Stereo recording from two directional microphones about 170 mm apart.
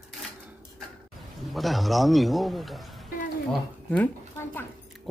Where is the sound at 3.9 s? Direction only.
10° left (ahead or behind).